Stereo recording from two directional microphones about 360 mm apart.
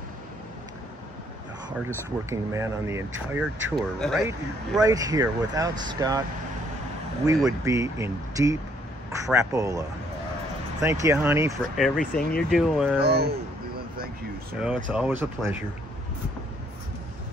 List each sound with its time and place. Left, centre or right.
2.2 s speech: centre
7.2 s speech: centre
12.0 s speech: left
12.4 s speech: centre
13.0 s speech: right
14.9 s speech: centre